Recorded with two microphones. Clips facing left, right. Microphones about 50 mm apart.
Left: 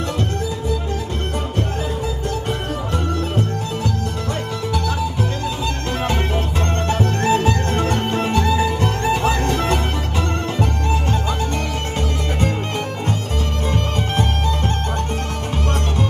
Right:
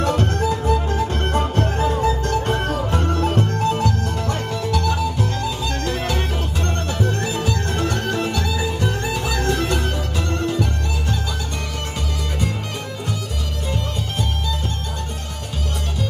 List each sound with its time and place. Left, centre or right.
0.7 s music: right
6.9 s music: left